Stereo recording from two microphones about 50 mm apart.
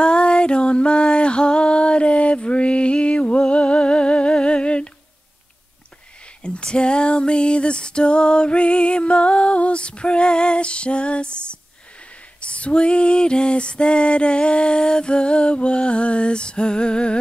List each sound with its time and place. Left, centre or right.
0.0 s music: centre
6.4 s music: left